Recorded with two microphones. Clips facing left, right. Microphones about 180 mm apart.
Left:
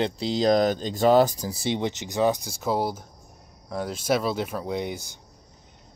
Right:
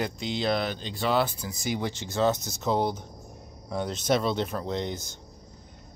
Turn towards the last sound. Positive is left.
turn(degrees=10)  # may be behind; listen again after turning